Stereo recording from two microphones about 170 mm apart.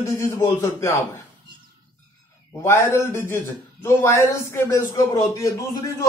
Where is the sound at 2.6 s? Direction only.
15° left (ahead or behind).